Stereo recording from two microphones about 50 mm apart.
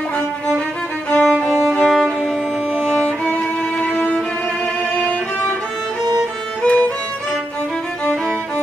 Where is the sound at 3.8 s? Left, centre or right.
Left.